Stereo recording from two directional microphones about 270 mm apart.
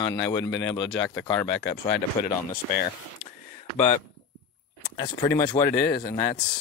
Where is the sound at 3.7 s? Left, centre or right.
Left.